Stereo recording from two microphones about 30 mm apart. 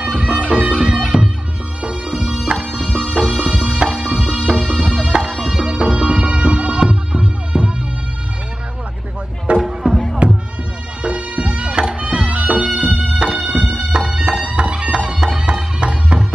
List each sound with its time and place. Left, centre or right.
0.0 s music: right
1.8 s music: right
2.9 s music: right
3.2 s music: right
4.5 s music: right
5.4 s music: right
5.7 s music: right
9.5 s music: right
11.8 s music: right
12.3 s bagpipes: right
12.8 s music: right
13.7 s music: right